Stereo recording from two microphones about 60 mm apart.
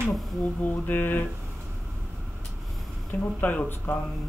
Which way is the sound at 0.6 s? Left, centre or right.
Left.